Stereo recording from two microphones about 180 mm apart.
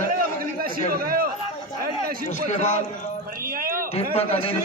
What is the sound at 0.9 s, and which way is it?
Speech, 55° right (ahead or behind).